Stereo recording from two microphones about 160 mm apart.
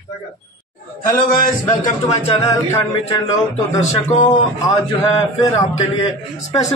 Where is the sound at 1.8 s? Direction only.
40° left (ahead or behind).